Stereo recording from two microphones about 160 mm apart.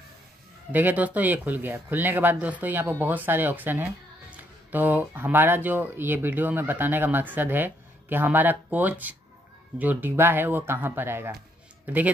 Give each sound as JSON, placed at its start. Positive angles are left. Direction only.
{"t": 0.7, "sound": "speech", "side_deg": -10}